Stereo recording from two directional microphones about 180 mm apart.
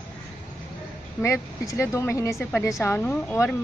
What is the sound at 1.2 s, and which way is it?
Speech, 15° left (ahead or behind).